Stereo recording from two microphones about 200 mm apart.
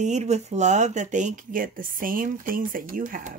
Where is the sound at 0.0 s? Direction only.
35° right (ahead or behind).